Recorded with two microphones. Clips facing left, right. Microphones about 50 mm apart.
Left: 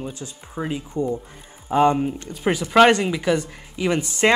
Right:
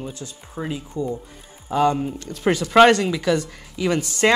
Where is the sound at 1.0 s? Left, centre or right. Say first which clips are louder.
Left 2 dB; left.